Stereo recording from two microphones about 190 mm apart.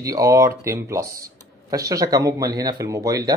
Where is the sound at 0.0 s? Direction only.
20° right (ahead or behind).